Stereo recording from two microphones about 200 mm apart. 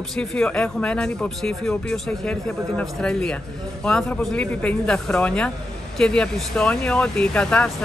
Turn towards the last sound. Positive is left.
turn(degrees=5)  # may be behind; listen again after turning